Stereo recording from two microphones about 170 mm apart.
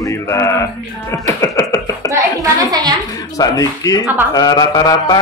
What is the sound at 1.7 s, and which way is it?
Chuckle, 20° left (ahead or behind).